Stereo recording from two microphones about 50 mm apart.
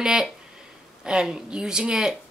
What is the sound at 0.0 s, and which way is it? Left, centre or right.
A woman's voice, centre.